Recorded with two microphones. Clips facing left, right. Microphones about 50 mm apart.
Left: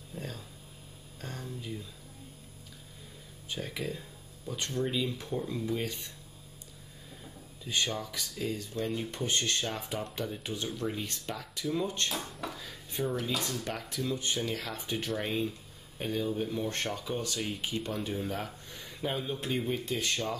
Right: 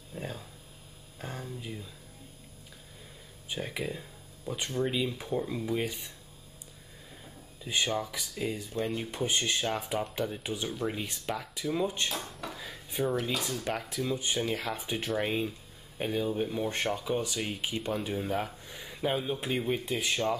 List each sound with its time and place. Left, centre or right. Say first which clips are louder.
0.1 s speech: right 2 dB; centre
3.4 s speech: right 2 dB; centre
7.6 s speech: right 2 dB; centre
12.1 s dishes: even; centre
13.1 s speech: right 2 dB; centre